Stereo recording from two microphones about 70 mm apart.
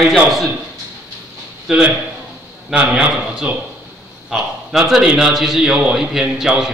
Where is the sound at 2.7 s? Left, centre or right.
Centre.